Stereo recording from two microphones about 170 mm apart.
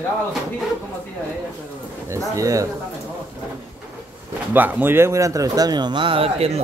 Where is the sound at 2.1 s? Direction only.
20° right (ahead or behind).